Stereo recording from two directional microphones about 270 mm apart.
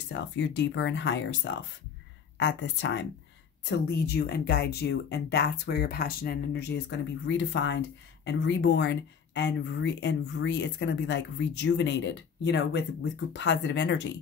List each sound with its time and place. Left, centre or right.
0.1 s speech: left